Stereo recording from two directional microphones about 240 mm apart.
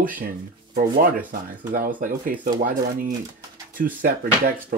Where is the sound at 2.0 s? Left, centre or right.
Right.